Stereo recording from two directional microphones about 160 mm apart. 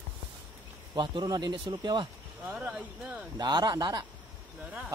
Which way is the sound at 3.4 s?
25° right (ahead or behind).